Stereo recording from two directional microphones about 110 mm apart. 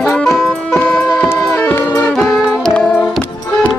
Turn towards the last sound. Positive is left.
turn(degrees=5)  # may be behind; listen again after turning